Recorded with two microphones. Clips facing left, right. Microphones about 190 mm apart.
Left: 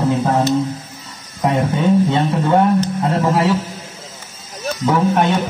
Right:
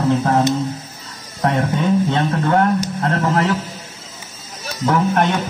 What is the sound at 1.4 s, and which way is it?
Speech, 10° left (ahead or behind).